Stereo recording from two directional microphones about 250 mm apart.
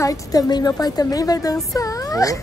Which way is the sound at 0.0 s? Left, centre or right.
Centre.